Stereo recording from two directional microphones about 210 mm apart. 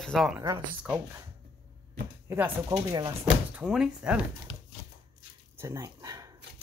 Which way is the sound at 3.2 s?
5° right (ahead or behind).